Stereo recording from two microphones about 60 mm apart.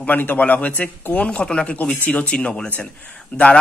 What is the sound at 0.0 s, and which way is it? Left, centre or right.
A man's voice, left.